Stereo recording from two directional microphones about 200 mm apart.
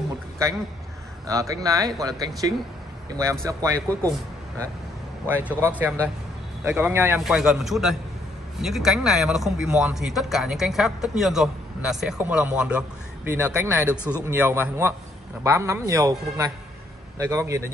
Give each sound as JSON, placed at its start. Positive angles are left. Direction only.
{"t": 1.2, "sound": "speech", "side_deg": -15}
{"t": 5.3, "sound": "speech", "side_deg": -10}